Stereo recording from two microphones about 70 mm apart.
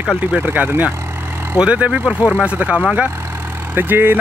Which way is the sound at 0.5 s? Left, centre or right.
Right.